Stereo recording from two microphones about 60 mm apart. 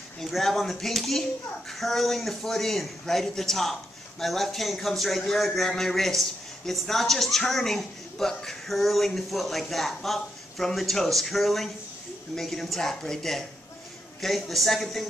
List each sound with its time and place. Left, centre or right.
0.2 s speech: centre